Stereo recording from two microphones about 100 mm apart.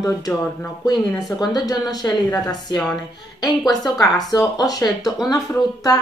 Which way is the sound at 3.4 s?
40° left (ahead or behind).